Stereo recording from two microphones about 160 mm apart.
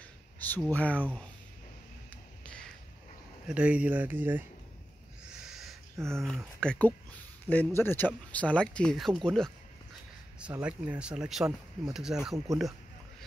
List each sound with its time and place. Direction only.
0.4 s speech: 10° left (ahead or behind)
2.0 s finger snapping: 5° left (ahead or behind)
3.4 s speech: 5° right (ahead or behind)
5.3 s owl: 5° right (ahead or behind)
5.9 s speech: 15° right (ahead or behind)
6.2 s speech: 5° left (ahead or behind)
10.4 s speech: 10° right (ahead or behind)